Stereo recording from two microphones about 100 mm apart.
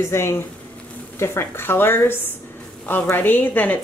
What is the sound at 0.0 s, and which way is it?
A woman's voice, 25° left (ahead or behind).